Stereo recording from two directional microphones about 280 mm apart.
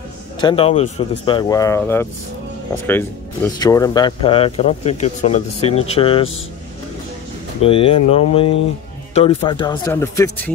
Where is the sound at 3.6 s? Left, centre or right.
Centre.